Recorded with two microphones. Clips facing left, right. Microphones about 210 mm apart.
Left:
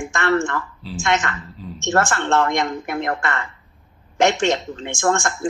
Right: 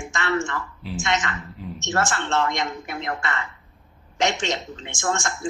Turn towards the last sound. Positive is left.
turn(degrees=55)  # may be behind; listen again after turning